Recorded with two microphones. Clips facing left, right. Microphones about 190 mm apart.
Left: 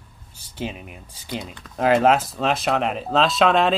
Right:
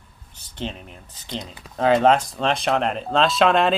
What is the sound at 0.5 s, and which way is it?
Speech, 10° left (ahead or behind).